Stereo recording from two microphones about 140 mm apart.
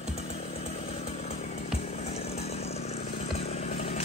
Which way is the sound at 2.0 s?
50° left (ahead or behind).